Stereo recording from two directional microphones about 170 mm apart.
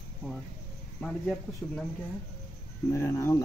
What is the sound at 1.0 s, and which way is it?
Speech, 5° left (ahead or behind).